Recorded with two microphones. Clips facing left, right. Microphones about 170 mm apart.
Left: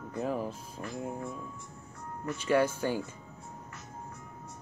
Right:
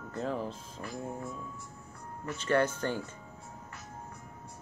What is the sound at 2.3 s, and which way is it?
Speech, 10° left (ahead or behind).